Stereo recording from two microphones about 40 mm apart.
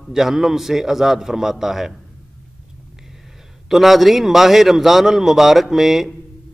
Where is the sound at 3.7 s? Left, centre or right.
Centre.